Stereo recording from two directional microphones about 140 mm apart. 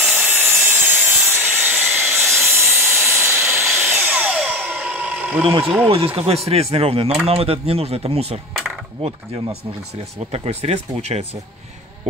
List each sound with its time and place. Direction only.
0.0 s wood: 15° right (ahead or behind)
2.2 s wood: centre (ahead or behind)
2.6 s sawing: 20° right (ahead or behind)
3.3 s a sound: 5° right (ahead or behind)
3.9 s a sound: 10° right (ahead or behind)
5.9 s speech: 40° right (ahead or behind)
10.3 s speech: 50° right (ahead or behind)